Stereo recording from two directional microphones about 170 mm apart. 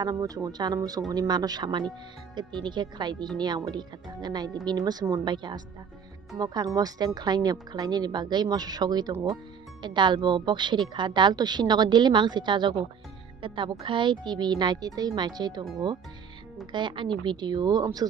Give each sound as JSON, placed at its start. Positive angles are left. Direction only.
{"t": 0.0, "sound": "speech", "side_deg": -20}
{"t": 16.7, "sound": "speech", "side_deg": -25}